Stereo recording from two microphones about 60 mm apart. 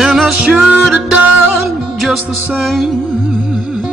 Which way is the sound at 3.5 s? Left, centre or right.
Centre.